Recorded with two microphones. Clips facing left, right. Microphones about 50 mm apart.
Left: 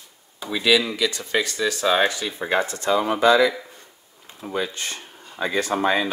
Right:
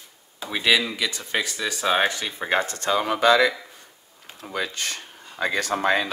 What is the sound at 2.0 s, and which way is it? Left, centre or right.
Speech, right.